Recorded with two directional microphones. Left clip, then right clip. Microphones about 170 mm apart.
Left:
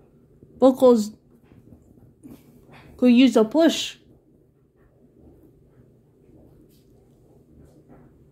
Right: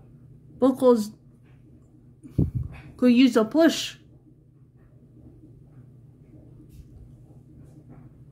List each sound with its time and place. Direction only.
0.6 s a woman's voice: 15° right (ahead or behind)
3.0 s speech: 30° right (ahead or behind)